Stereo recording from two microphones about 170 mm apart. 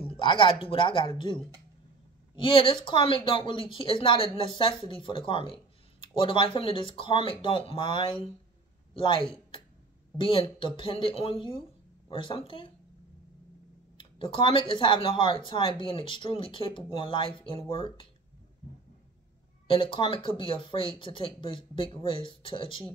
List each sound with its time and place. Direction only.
0.2 s speech: 30° left (ahead or behind)
13.9 s speech: 30° left (ahead or behind)
19.7 s speech: 30° left (ahead or behind)